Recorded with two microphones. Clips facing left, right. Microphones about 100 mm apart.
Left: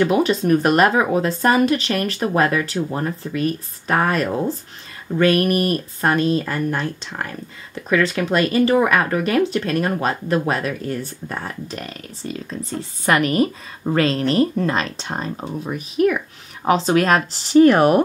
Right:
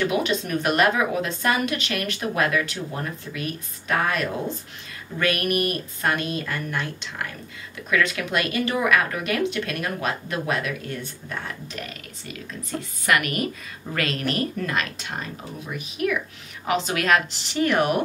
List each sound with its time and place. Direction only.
0.0 s speech: 40° left (ahead or behind)